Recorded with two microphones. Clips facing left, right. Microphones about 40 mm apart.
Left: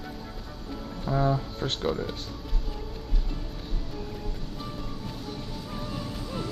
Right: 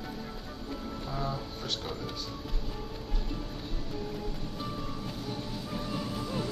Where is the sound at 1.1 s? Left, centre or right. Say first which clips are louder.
Left 11 dB; left.